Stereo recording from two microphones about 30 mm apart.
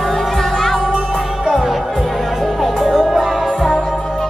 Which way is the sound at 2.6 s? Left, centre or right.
Centre.